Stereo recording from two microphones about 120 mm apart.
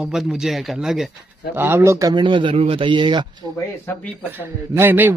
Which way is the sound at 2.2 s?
45° right (ahead or behind).